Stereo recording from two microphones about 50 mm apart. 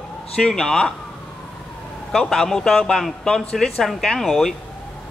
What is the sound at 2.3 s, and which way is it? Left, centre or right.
A man's voice, centre.